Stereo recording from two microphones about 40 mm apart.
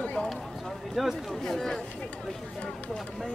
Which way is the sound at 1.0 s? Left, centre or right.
Centre.